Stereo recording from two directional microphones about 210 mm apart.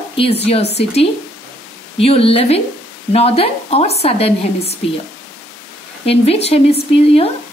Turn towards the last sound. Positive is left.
turn(degrees=30)  # may be behind; listen again after turning